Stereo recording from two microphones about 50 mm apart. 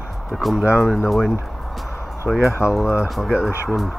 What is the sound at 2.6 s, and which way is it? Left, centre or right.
Speech, right.